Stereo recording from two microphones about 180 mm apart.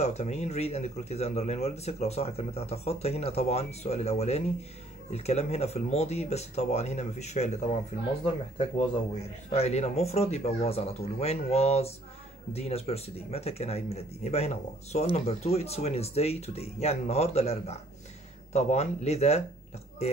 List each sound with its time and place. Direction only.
0.0 s speech: 40° left (ahead or behind)
9.5 s speech: 35° left (ahead or behind)